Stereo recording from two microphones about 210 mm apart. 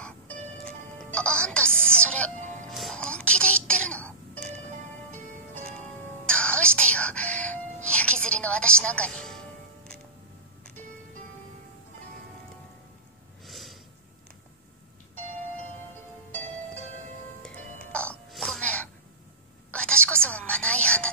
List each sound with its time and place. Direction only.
0.7 s music: 5° left (ahead or behind)
6.2 s music: 5° left (ahead or behind)
13.5 s snort: centre (ahead or behind)
17.9 s throat clearing: 5° left (ahead or behind)
19.7 s a sound: 5° left (ahead or behind)